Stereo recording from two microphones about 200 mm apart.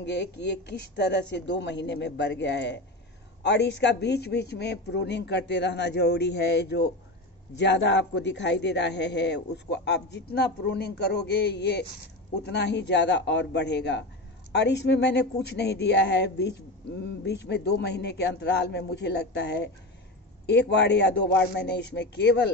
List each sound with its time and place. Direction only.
0.0 s a man's voice: 60° left (ahead or behind)